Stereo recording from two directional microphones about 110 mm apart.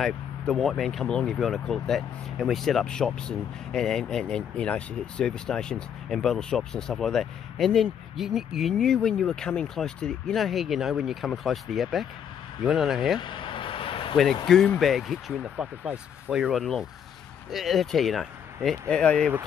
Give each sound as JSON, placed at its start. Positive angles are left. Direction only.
{"t": 0.0, "sound": "speech", "side_deg": 0}
{"t": 13.2, "sound": "vehicle", "side_deg": 50}
{"t": 14.8, "sound": "speech", "side_deg": 0}